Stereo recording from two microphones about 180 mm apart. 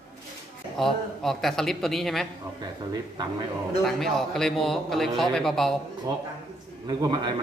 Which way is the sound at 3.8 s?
Centre (ahead or behind).